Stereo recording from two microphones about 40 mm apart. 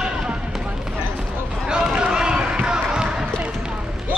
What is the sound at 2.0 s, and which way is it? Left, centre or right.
Basketball bounce, right.